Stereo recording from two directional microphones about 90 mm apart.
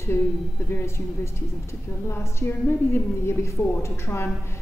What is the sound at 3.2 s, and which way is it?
A woman's voice, 30° left (ahead or behind).